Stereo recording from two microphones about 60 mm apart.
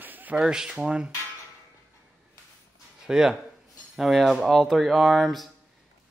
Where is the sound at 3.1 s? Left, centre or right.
Centre.